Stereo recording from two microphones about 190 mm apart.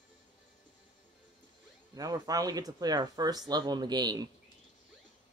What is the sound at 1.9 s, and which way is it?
Speech, 20° right (ahead or behind).